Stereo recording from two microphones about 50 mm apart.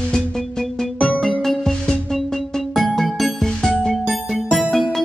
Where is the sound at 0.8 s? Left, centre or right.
Left.